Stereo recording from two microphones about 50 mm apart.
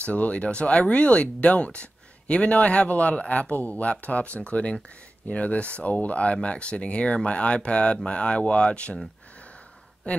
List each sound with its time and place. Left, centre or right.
0.0 s speech: left
10.1 s speech: left